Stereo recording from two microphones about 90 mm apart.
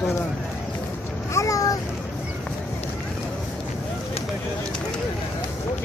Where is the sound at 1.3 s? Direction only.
35° left (ahead or behind).